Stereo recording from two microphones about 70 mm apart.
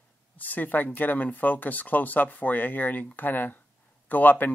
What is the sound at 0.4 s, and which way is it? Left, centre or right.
Speech, left.